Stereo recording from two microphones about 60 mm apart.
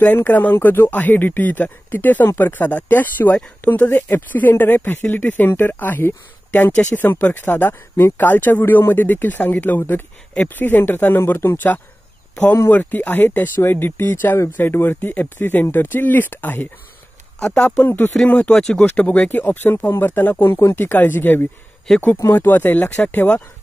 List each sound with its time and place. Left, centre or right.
0.3 s speech: left
17.6 s speech: left
18.6 s speech: centre
18.9 s speech: left
20.5 s speech: left
22.8 s speech: left